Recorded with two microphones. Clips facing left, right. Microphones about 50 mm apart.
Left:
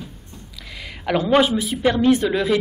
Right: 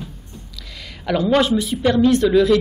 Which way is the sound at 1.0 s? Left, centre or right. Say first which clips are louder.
Even; centre.